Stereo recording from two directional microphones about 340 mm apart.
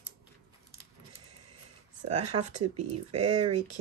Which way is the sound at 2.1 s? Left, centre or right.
Right.